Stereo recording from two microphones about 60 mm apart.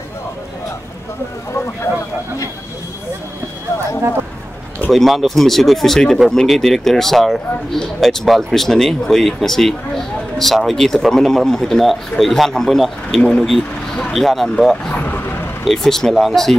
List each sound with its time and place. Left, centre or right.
4.9 s speech: centre
13.2 s speech: centre
14.1 s speech: centre
14.9 s vehicle: left
15.6 s speech: centre